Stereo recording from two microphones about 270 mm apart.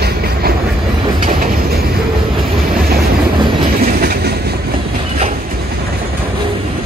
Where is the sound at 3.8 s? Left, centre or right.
Right.